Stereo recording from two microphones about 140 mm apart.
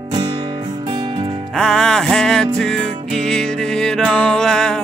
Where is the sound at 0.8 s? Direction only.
30° right (ahead or behind).